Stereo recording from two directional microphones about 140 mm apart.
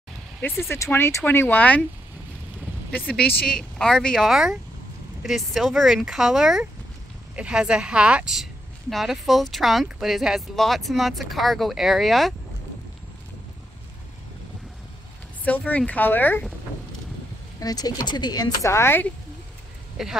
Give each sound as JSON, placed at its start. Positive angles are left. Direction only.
{"t": 0.4, "sound": "speech", "side_deg": 20}
{"t": 2.9, "sound": "speech", "side_deg": 10}
{"t": 15.4, "sound": "speech", "side_deg": 10}
{"t": 17.6, "sound": "speech", "side_deg": 25}
{"t": 20.0, "sound": "speech", "side_deg": -5}